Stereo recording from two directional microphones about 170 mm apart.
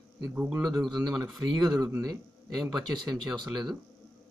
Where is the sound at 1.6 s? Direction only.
20° right (ahead or behind).